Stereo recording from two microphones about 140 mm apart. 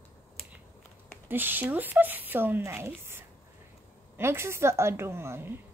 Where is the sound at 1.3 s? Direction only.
15° right (ahead or behind).